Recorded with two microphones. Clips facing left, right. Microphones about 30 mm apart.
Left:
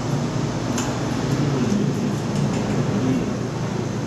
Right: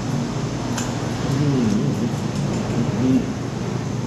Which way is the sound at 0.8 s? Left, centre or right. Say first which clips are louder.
Left 1 dB; centre.